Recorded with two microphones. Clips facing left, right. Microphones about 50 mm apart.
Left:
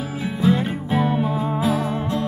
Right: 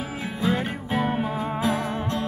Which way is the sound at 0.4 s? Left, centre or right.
Centre.